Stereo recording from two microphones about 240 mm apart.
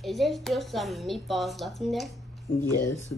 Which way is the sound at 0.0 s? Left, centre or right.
Centre.